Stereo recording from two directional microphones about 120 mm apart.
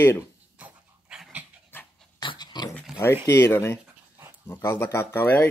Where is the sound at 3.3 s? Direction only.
20° left (ahead or behind).